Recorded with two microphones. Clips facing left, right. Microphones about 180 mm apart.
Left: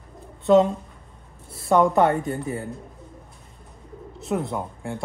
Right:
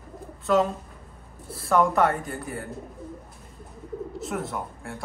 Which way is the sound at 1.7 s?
20° left (ahead or behind).